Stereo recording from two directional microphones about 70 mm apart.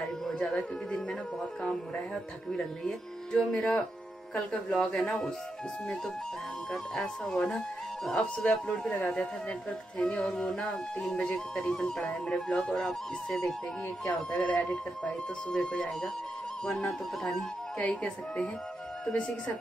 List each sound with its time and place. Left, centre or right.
0.3 s a sound: centre
2.5 s speech: centre
6.7 s speech: centre
12.8 s speech: centre
17.7 s speech: centre